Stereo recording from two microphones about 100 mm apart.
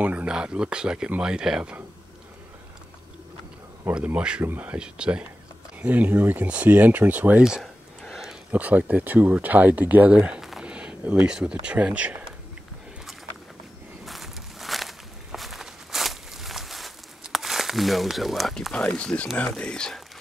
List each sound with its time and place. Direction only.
0.0 s speech: 15° right (ahead or behind)
3.9 s speech: 10° right (ahead or behind)
8.0 s a sound: 5° right (ahead or behind)
8.5 s speech: 15° right (ahead or behind)
14.0 s walk: centre (ahead or behind)
18.8 s speech: 10° left (ahead or behind)